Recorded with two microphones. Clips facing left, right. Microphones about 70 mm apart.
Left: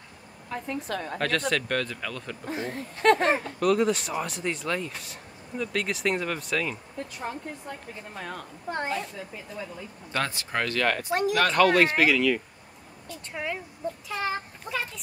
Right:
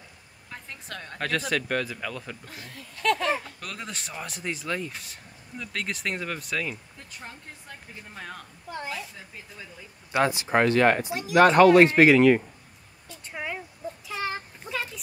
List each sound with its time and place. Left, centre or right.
0.5 s speech: centre
2.4 s speech: left
3.5 s speech: centre
7.2 s speech: centre
8.1 s speech: centre
10.1 s speech: centre; by 12.4 s right
13.3 s speech: centre
14.0 s a sound: centre